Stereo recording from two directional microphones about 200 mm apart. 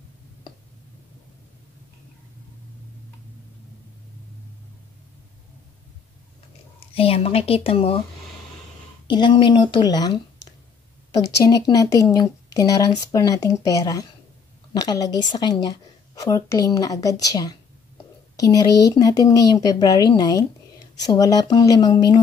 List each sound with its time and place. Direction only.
6.8 s a woman's voice: 30° left (ahead or behind)
9.0 s a woman's voice: 25° left (ahead or behind)